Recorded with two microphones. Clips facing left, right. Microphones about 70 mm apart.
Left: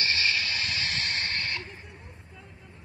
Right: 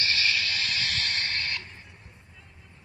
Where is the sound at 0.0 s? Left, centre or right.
Left.